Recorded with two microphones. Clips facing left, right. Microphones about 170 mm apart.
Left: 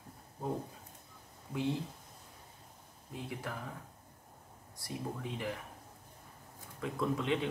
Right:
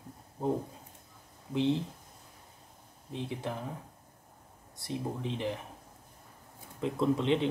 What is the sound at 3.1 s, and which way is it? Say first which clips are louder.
Speech: right 5 dB; 25° right (ahead or behind).